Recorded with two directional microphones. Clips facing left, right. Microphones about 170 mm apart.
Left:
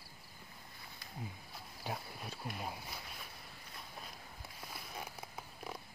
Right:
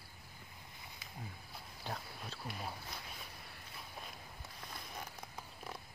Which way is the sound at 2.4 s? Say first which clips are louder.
Left 2 dB; 10° left (ahead or behind).